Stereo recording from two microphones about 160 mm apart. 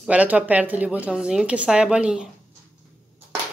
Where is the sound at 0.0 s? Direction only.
10° right (ahead or behind).